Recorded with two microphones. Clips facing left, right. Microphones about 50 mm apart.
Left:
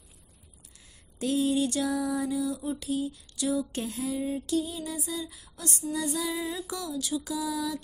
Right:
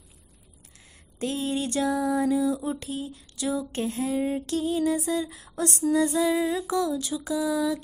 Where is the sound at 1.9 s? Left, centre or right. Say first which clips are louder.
Right 5 dB; right.